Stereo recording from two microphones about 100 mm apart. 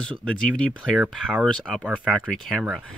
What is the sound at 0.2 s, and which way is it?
Speech, 10° left (ahead or behind).